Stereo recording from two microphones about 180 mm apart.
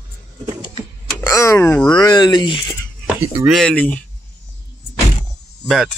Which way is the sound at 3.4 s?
5° left (ahead or behind).